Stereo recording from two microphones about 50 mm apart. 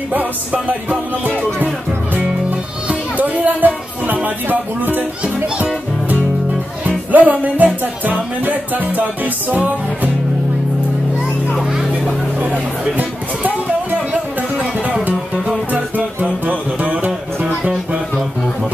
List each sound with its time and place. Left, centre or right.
0.1 s music: right
2.9 s music: right
7.1 s music: right
11.5 s a sound: centre
12.4 s music: right
15.7 s music: right